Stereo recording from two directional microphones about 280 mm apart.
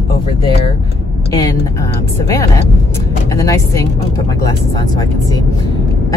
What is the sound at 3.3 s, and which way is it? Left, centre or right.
Speech, centre.